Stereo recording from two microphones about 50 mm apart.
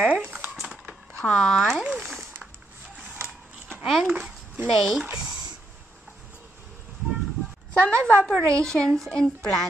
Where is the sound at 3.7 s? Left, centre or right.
Right.